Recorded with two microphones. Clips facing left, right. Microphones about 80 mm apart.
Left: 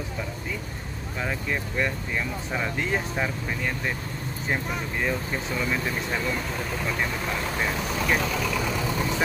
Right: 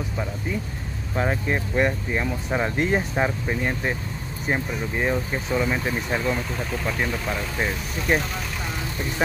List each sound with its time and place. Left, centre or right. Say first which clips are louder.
1.1 s speech: right 5 dB; right; by 6.3 s centre